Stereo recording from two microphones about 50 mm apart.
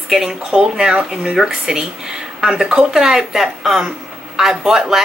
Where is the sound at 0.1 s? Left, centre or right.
Centre.